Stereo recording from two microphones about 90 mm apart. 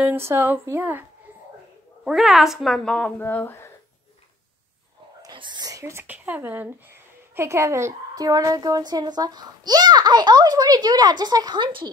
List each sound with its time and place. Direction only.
0.0 s speech: 25° right (ahead or behind)
2.0 s a woman's voice: 5° right (ahead or behind)
3.2 s speech: 20° left (ahead or behind)
5.3 s speech: 60° right (ahead or behind)
5.7 s speech: 35° right (ahead or behind)
6.0 s a woman's voice: 15° right (ahead or behind); by 11.9 s 65° right (ahead or behind)